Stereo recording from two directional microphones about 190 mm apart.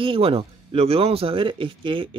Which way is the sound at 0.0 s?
30° right (ahead or behind).